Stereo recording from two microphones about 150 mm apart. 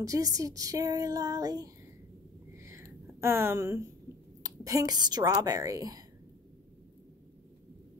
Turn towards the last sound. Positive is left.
turn(degrees=-25)  # may be behind; listen again after turning